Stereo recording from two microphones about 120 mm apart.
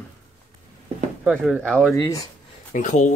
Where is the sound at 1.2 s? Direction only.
5° right (ahead or behind).